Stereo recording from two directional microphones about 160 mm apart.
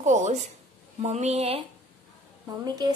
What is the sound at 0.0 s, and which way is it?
Speech, 50° right (ahead or behind).